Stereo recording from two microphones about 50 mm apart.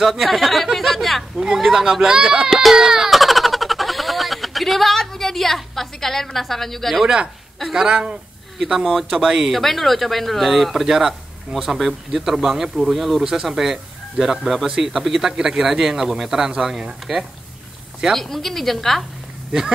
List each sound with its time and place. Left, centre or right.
0.0 s speech: centre
0.7 s a sound: centre
1.8 s a man's voice: centre
2.7 s a sound: centre
7.7 s a man's voice: centre
9.5 s speech: centre
10.7 s a man's voice: centre
18.1 s speech: centre